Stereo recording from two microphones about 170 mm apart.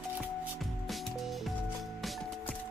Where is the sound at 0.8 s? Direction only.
Centre (ahead or behind).